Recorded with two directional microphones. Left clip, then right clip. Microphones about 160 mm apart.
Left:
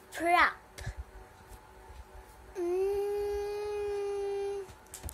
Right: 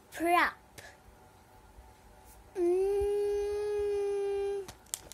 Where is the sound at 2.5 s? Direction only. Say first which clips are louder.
Right 2 dB; 35° right (ahead or behind).